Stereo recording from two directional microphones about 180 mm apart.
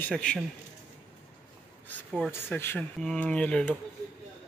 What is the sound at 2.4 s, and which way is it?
Speech, 10° left (ahead or behind).